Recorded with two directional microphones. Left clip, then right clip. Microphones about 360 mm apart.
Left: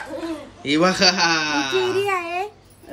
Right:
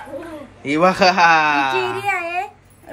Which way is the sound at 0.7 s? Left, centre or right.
Centre.